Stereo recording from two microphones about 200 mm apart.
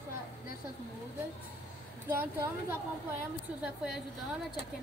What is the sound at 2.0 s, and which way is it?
A woman's voice, 10° right (ahead or behind).